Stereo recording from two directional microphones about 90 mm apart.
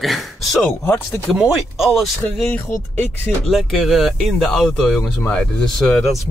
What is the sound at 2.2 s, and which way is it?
Speech, 25° left (ahead or behind).